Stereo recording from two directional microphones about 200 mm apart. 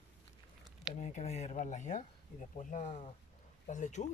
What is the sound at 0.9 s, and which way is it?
Speech, 35° left (ahead or behind).